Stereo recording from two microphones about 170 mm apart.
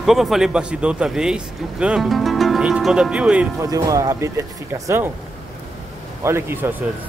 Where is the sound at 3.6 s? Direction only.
20° right (ahead or behind).